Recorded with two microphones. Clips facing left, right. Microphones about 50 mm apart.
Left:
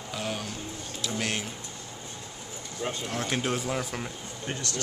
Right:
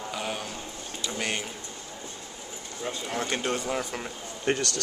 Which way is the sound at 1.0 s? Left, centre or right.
Centre.